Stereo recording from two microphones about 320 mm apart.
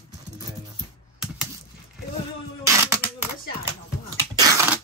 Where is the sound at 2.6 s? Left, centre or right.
Centre.